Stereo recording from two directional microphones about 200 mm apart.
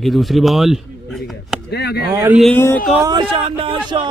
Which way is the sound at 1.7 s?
55° left (ahead or behind).